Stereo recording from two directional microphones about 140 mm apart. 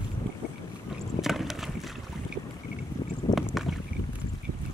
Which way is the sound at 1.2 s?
Centre (ahead or behind).